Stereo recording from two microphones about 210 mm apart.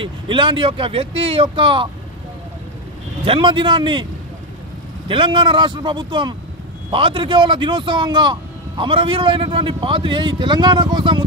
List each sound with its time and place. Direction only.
0.0 s speech: 25° right (ahead or behind)
3.3 s speech: 25° right (ahead or behind)